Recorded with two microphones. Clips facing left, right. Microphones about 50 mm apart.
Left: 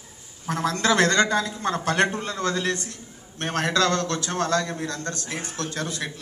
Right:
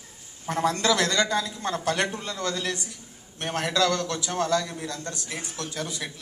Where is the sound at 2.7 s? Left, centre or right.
Left.